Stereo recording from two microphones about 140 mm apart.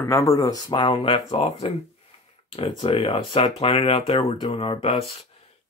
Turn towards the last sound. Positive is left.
turn(degrees=40)  # may be behind; listen again after turning